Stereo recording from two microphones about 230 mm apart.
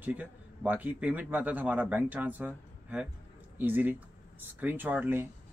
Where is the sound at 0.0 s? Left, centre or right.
Centre.